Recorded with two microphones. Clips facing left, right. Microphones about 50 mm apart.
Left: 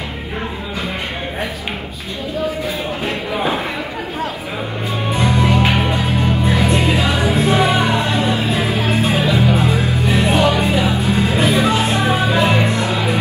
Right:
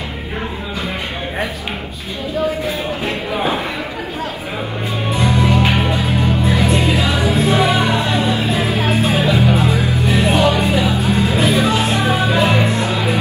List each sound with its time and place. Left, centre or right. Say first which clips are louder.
5.5 s music: even; left
6.0 s music: even; left